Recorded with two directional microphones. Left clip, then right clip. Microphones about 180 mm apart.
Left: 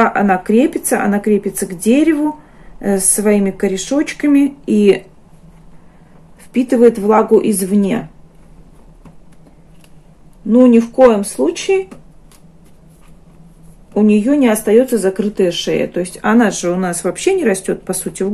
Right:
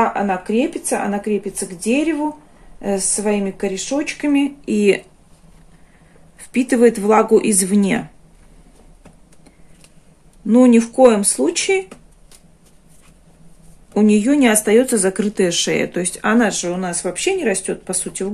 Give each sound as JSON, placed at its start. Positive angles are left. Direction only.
{"t": 0.1, "sound": "speech", "side_deg": 15}
{"t": 4.7, "sound": "speech", "side_deg": 0}
{"t": 6.5, "sound": "speech", "side_deg": -15}
{"t": 10.5, "sound": "speech", "side_deg": -30}
{"t": 13.9, "sound": "speech", "side_deg": -25}
{"t": 16.3, "sound": "speech", "side_deg": 0}